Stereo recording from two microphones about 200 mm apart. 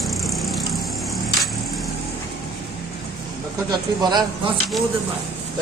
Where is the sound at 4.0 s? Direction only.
20° right (ahead or behind).